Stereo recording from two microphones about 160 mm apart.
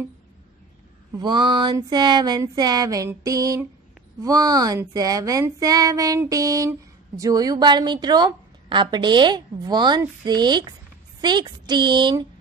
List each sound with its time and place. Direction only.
1.1 s speech: 30° right (ahead or behind)